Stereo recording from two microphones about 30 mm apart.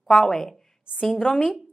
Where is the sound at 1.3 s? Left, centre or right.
Left.